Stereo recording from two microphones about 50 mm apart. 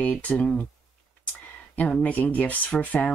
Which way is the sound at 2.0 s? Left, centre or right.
Left.